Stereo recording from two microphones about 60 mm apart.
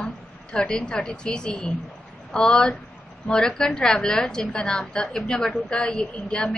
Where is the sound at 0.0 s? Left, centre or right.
Centre.